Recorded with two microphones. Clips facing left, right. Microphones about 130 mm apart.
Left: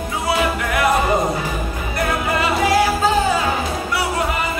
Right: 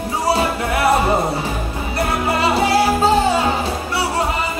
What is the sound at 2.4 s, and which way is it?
Music, 30° right (ahead or behind).